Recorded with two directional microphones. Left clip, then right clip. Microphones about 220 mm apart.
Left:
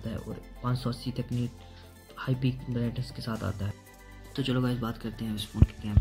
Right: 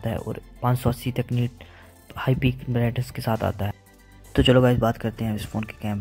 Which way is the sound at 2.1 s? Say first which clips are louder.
Right 8 dB; 40° right (ahead or behind).